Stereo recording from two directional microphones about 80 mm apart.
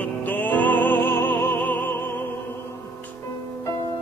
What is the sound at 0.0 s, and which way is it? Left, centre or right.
Music, left.